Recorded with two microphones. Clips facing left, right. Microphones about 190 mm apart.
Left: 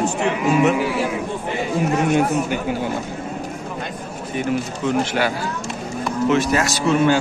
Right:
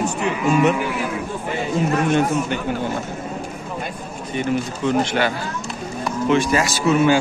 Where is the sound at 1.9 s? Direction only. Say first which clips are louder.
Left 1 dB; 10° left (ahead or behind).